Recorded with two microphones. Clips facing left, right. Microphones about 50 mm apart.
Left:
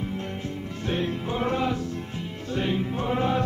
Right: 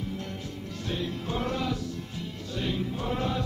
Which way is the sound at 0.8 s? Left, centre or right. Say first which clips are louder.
Left 5 dB; left.